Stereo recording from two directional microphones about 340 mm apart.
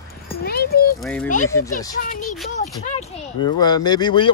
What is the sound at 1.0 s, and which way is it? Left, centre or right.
Speech, centre.